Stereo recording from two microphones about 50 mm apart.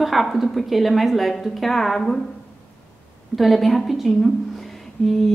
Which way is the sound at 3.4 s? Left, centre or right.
Centre.